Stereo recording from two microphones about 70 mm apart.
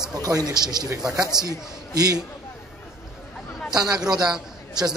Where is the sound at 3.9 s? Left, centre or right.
Right.